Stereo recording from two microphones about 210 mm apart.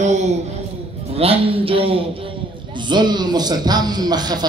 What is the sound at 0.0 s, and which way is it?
Speech, 35° right (ahead or behind).